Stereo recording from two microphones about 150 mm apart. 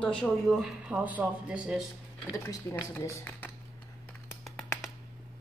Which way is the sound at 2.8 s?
20° left (ahead or behind).